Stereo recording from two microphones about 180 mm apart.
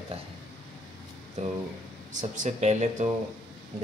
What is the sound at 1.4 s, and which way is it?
Speech, 40° right (ahead or behind).